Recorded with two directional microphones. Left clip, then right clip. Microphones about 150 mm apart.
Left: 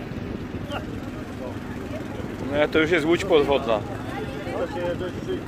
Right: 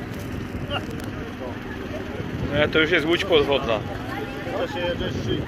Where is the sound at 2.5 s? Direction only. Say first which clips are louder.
Right 1 dB; 40° left (ahead or behind).